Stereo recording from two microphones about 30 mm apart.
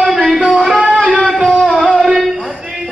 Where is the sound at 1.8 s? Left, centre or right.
Right.